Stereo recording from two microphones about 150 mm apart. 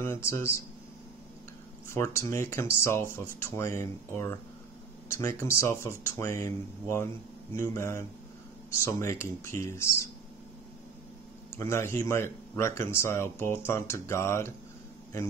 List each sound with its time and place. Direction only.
0.0 s speech: 15° left (ahead or behind)
1.9 s speech: 20° left (ahead or behind)
11.5 s speech: 20° left (ahead or behind)